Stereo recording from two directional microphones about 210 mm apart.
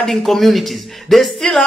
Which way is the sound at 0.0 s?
Centre (ahead or behind).